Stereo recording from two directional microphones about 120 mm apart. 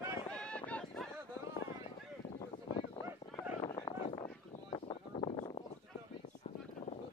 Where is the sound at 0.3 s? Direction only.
10° left (ahead or behind).